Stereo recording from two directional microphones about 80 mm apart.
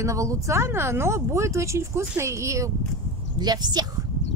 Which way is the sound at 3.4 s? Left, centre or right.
Right.